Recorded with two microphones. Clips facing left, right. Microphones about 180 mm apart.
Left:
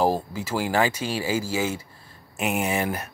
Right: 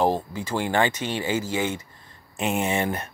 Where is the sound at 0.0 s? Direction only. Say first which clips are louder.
Even; 10° left (ahead or behind).